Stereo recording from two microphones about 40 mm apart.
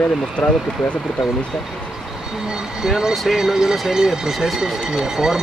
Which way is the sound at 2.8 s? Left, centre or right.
Centre.